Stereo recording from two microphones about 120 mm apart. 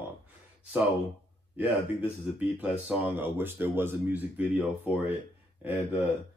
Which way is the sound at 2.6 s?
10° right (ahead or behind).